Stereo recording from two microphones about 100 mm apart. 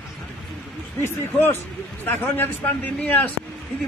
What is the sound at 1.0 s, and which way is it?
A man's voice, 25° left (ahead or behind).